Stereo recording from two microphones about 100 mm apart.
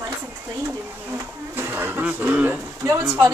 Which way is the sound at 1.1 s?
20° right (ahead or behind).